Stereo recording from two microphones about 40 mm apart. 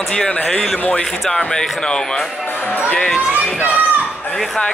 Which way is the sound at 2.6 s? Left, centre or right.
Left.